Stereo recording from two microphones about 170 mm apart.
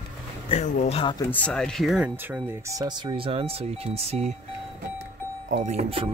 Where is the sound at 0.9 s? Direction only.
25° left (ahead or behind).